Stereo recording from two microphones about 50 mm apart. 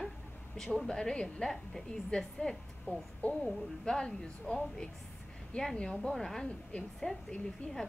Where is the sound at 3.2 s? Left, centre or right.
Left.